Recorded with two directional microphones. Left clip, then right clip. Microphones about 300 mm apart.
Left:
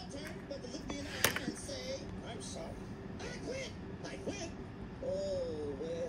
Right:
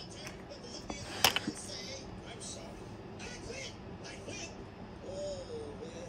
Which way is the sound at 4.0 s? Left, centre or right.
Left.